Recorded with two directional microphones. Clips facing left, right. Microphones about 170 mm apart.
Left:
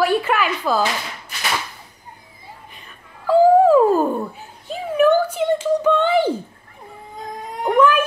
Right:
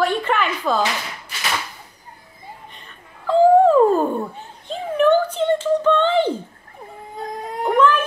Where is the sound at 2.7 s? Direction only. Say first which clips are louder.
Even; 5° left (ahead or behind).